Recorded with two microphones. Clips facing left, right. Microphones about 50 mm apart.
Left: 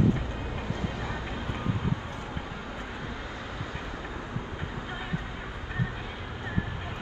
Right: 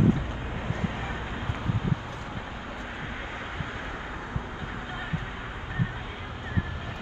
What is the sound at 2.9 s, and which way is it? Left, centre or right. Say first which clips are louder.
Vehicle: right 2 dB; right.